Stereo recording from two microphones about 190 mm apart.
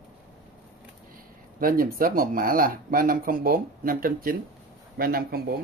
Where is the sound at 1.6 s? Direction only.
50° right (ahead or behind).